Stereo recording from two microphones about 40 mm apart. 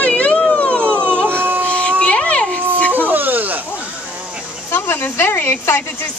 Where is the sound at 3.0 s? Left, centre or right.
Right.